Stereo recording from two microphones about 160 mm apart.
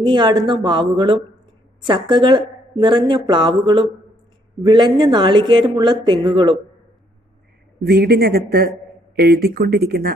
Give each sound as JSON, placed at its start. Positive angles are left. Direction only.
{"t": 0.0, "sound": "speech", "side_deg": -30}
{"t": 7.8, "sound": "speech", "side_deg": -75}